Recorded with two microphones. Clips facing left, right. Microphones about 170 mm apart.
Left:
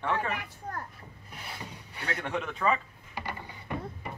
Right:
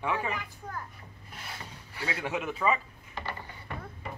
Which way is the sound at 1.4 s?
20° left (ahead or behind).